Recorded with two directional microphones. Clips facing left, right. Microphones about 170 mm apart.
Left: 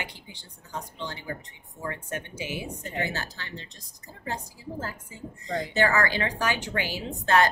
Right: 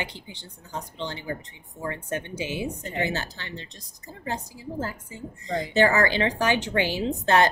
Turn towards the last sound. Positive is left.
turn(degrees=-25)  # may be behind; listen again after turning